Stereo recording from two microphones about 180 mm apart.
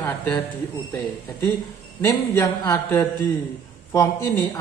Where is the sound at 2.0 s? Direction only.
15° left (ahead or behind).